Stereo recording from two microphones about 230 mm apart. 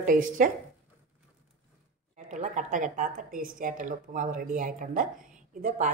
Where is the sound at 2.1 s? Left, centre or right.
Right.